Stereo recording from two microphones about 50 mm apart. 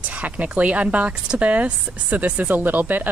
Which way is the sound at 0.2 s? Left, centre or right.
Right.